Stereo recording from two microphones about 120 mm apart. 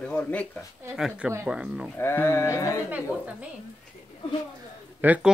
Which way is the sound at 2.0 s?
20° left (ahead or behind).